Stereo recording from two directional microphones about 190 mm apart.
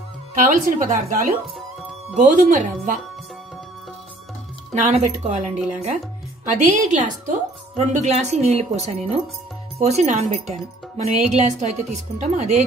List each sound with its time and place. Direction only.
0.3 s speech: 45° right (ahead or behind)
4.7 s speech: 40° right (ahead or behind)
6.6 s speech: 40° right (ahead or behind)